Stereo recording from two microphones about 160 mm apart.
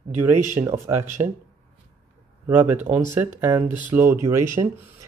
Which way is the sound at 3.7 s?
50° right (ahead or behind).